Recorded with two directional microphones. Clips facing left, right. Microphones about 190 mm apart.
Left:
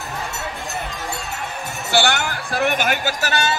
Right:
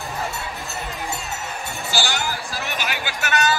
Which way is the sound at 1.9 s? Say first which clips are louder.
Left 6 dB; 60° left (ahead or behind).